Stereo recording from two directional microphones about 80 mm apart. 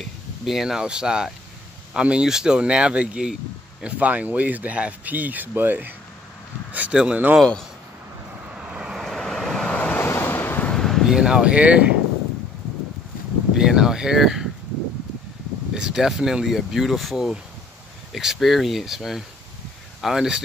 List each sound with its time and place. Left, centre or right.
0.5 s speech: centre
8.5 s vehicle: centre
9.0 s vehicle: centre; by 10.7 s left
10.7 s a sound: centre
11.1 s speech: centre
13.6 s speech: centre
15.7 s speech: centre